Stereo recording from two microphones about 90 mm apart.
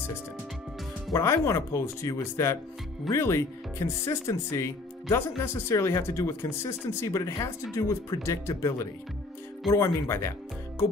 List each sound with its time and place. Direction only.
1.1 s speech: 30° left (ahead or behind)